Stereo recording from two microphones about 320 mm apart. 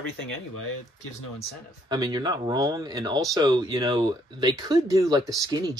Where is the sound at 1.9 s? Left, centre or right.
Centre.